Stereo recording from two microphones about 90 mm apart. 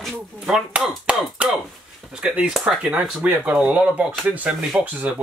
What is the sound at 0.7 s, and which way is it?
Speech, 15° right (ahead or behind).